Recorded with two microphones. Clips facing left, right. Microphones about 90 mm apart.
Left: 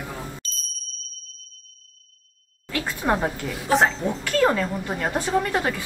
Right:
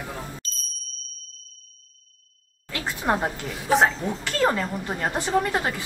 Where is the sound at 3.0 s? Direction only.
10° right (ahead or behind).